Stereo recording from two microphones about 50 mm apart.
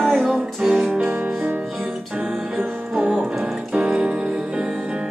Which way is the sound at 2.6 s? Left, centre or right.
Centre.